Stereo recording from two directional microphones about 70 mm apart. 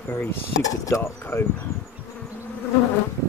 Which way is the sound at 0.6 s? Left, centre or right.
Left.